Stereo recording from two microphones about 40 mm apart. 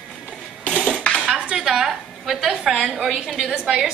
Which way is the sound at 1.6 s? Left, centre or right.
Centre.